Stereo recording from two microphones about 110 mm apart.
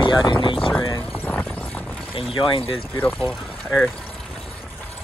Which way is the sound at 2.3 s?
50° left (ahead or behind).